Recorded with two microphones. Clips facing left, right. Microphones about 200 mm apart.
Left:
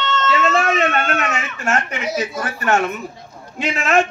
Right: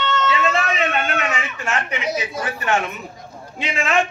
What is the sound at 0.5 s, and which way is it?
Speech, 45° left (ahead or behind).